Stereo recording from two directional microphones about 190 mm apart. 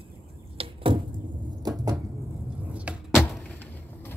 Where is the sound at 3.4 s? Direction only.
10° left (ahead or behind).